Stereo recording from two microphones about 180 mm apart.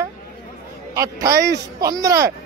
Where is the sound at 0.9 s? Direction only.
20° right (ahead or behind).